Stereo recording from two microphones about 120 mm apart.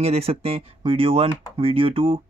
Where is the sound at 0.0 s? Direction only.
55° right (ahead or behind).